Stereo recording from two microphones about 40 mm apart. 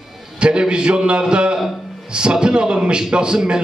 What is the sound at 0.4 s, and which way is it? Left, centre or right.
A man's voice, right.